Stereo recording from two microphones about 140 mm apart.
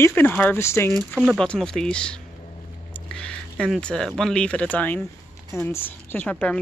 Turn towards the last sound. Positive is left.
turn(degrees=10)  # may be behind; listen again after turning